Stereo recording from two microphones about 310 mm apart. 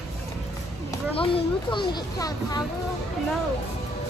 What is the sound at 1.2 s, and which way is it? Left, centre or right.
Speech, centre.